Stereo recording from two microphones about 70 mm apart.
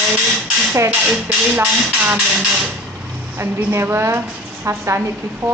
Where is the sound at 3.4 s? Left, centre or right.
Right.